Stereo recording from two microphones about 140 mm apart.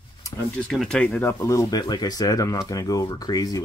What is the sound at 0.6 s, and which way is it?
Speech, 5° left (ahead or behind).